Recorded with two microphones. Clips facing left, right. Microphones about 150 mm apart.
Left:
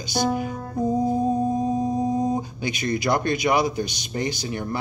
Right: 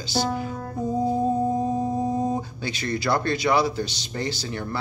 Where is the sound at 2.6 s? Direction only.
15° left (ahead or behind).